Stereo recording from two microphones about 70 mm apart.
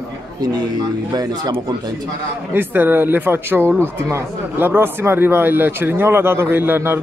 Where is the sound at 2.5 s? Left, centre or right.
Right.